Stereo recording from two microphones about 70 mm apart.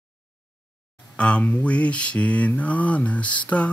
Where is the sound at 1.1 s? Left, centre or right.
Centre.